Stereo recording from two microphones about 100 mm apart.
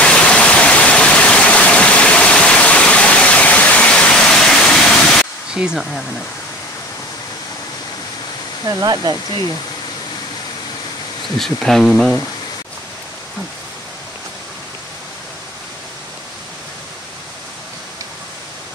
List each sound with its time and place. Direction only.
0.0 s waterfall: 10° left (ahead or behind)
5.5 s speech: 10° right (ahead or behind)
8.6 s speech: 40° right (ahead or behind)
11.3 s speech: 5° left (ahead or behind)